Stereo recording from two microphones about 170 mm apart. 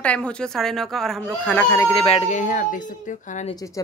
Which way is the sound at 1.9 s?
30° left (ahead or behind).